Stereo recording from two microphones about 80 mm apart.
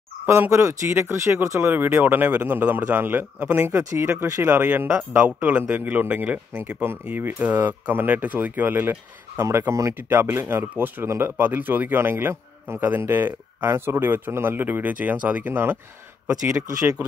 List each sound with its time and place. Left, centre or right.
0.5 s speech: right
1.6 s speech: right
5.2 s speech: centre